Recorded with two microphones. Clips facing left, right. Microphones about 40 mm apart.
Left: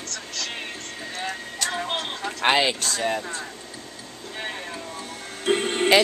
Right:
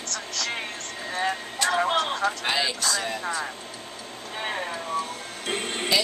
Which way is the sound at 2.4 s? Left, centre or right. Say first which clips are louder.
Left 6 dB; left.